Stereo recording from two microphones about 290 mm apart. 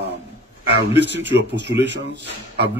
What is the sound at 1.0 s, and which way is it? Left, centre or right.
Speech, right.